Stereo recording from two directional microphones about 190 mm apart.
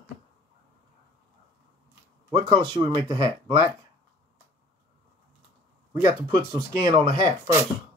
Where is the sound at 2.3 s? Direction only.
20° right (ahead or behind).